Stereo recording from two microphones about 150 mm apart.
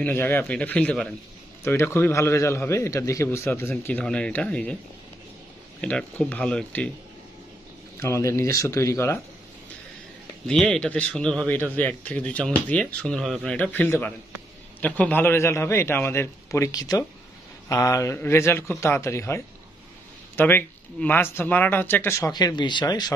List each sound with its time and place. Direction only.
0.0 s speech: 15° left (ahead or behind)
1.6 s speech: 15° left (ahead or behind)
5.8 s speech: 10° left (ahead or behind)
8.0 s speech: 20° left (ahead or behind)
10.4 s speech: 5° left (ahead or behind); by 23.1 s 25° left (ahead or behind)